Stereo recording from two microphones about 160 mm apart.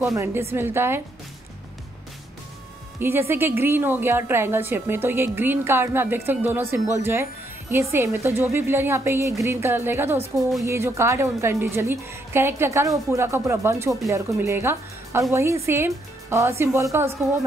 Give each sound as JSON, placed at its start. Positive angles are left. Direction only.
{"t": 0.1, "sound": "a woman's voice", "side_deg": -15}
{"t": 3.0, "sound": "a woman's voice", "side_deg": -15}